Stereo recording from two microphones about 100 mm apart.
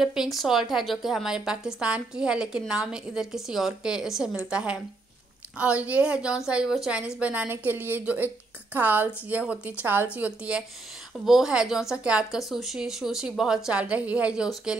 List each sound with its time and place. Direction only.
0.0 s a woman's voice: 5° right (ahead or behind)